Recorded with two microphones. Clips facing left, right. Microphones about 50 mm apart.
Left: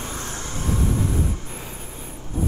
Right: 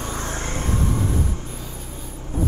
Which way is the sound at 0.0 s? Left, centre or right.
Right.